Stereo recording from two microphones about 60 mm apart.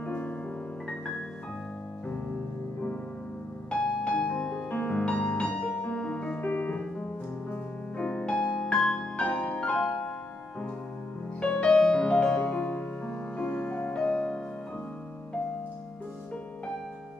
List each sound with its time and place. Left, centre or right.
0.0 s music: left
3.7 s music: centre
4.6 s music: left
5.0 s music: centre
7.5 s piano: left
8.6 s music: centre
11.4 s music: centre